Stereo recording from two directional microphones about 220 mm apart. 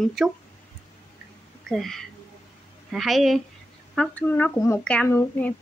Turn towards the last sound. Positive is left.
turn(degrees=10)  # may be behind; listen again after turning